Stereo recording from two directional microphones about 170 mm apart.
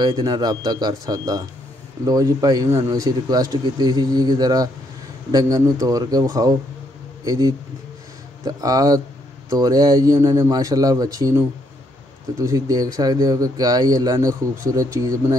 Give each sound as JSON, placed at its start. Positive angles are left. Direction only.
{"t": 0.0, "sound": "speech", "side_deg": -25}